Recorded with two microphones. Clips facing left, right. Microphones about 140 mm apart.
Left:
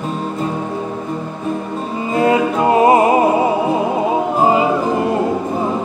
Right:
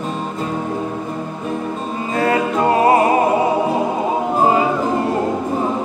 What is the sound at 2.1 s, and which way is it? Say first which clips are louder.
Music: left 3 dB; 15° left (ahead or behind).